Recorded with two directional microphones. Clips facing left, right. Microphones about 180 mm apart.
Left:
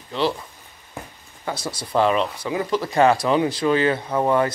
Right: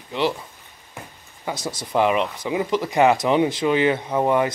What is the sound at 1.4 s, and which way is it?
Speech, 15° right (ahead or behind).